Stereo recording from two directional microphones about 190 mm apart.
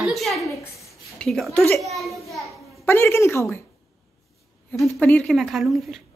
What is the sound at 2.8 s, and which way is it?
Speech, 15° left (ahead or behind).